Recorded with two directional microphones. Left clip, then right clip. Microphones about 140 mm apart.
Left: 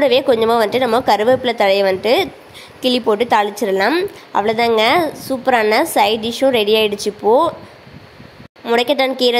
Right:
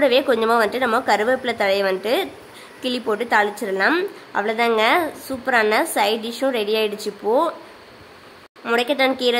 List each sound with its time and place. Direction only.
0.0 s a woman's voice: 30° left (ahead or behind)
3.9 s a woman's voice: 25° left (ahead or behind)
8.7 s a woman's voice: 35° left (ahead or behind)